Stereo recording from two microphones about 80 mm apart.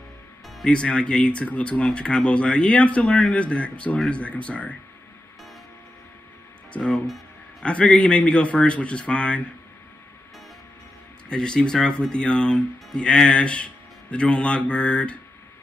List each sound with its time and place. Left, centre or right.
0.7 s speech: centre
6.7 s speech: centre
11.2 s speech: centre